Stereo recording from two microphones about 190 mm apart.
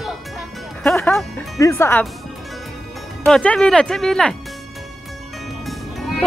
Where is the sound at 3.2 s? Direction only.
5° left (ahead or behind).